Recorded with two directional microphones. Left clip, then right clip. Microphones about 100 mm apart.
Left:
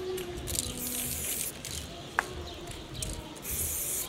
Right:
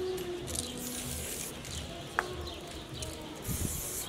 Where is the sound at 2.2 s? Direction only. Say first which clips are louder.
Left 2 dB; 15° left (ahead or behind).